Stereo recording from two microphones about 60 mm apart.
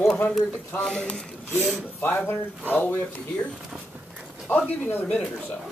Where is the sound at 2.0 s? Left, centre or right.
Left.